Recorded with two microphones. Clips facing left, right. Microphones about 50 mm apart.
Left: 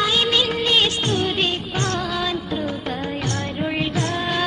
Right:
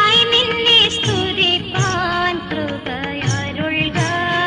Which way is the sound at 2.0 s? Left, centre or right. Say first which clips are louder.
Right 6 dB; right.